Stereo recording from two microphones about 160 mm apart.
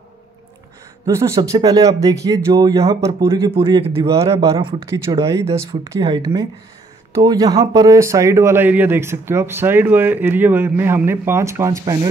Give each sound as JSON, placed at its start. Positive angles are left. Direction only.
{"t": 1.0, "sound": "speech", "side_deg": -20}
{"t": 3.5, "sound": "speech", "side_deg": -30}
{"t": 4.1, "sound": "speech", "side_deg": -20}
{"t": 5.2, "sound": "speech", "side_deg": -20}